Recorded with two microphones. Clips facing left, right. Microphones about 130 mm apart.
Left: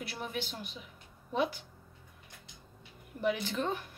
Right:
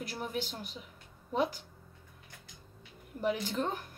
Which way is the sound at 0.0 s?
40° right (ahead or behind).